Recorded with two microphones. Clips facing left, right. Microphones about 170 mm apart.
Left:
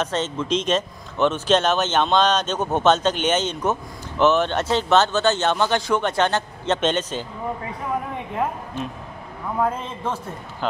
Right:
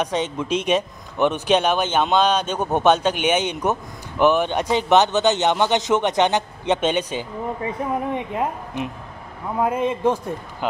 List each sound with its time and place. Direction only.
0.0 s speech: 15° right (ahead or behind)
8.8 s speech: 15° right (ahead or behind)